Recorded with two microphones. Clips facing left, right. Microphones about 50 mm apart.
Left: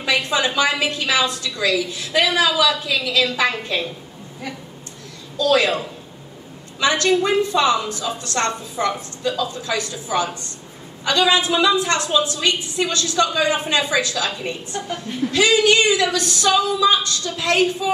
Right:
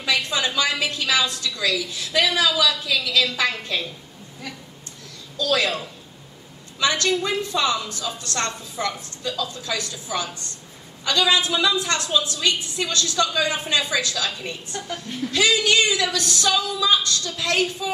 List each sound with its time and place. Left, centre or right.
0.0 s a woman's voice: left
5.4 s a woman's voice: left